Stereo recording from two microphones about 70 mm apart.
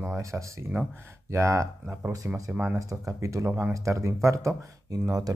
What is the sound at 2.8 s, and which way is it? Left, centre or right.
Speech, right.